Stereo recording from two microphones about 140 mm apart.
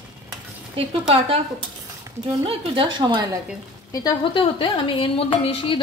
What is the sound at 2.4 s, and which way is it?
Speech, 40° right (ahead or behind).